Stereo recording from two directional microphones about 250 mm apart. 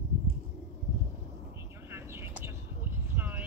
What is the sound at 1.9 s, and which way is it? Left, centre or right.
Vehicle, centre.